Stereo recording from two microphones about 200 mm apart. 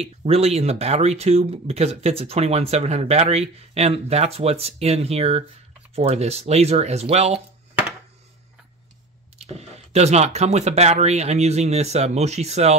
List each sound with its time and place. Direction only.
0.0 s speech: 30° right (ahead or behind)
9.5 s speech: 30° right (ahead or behind)